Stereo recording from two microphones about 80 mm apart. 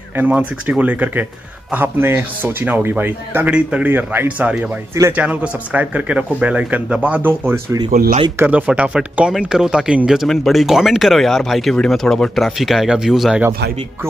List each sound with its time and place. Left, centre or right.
0.1 s a man's voice: right
3.4 s speech: centre
3.9 s a man's voice: right; by 10.2 s centre
10.2 s speech: centre